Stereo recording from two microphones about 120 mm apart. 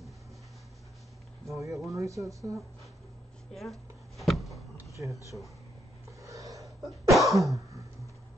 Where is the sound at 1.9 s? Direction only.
25° right (ahead or behind).